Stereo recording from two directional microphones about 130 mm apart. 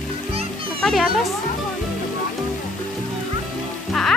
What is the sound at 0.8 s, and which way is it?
Speech, 5° left (ahead or behind).